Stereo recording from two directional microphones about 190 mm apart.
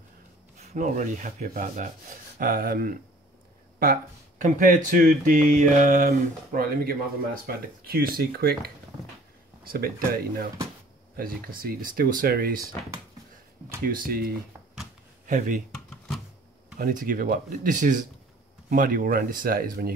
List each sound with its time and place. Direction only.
0.6 s speech: 40° right (ahead or behind)
13.8 s speech: 50° right (ahead or behind)
16.7 s speech: 50° right (ahead or behind)